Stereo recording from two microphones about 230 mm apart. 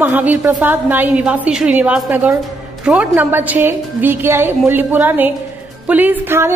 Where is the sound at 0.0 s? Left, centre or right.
Centre.